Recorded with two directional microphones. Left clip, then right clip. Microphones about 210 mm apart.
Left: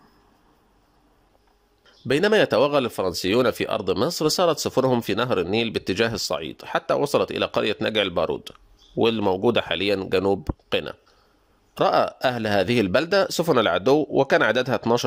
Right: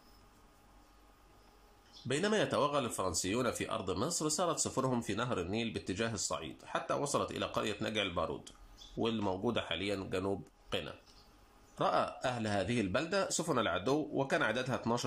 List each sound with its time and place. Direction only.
2.0 s speech: 45° left (ahead or behind)